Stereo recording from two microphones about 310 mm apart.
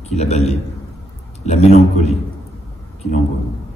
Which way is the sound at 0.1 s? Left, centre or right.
Left.